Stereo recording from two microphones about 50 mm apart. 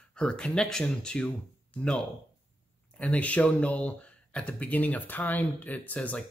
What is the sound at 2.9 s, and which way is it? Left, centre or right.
Speech, left.